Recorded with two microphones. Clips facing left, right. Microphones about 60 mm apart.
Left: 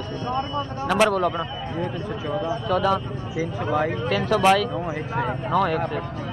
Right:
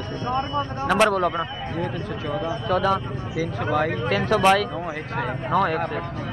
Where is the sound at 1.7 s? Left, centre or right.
Centre.